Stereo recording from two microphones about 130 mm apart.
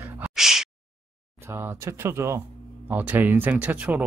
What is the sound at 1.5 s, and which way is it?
Speech, 20° right (ahead or behind).